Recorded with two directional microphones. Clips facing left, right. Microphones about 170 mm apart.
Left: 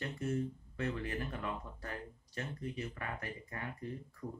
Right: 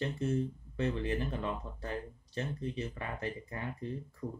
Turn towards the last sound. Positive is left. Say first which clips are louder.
# right 4 dB
turn(degrees=-25)  # may be behind; listen again after turning